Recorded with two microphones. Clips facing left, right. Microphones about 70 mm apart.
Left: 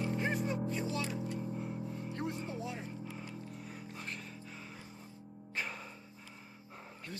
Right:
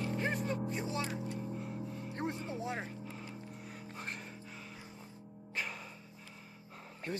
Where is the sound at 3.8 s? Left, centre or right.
Right.